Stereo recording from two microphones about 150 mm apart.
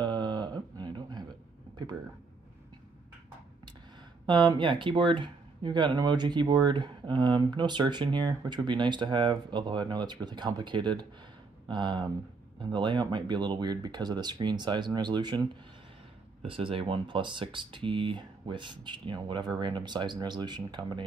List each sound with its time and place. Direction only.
0.0 s a sound: 30° right (ahead or behind)
4.3 s speech: 30° right (ahead or behind)
16.4 s speech: 35° right (ahead or behind)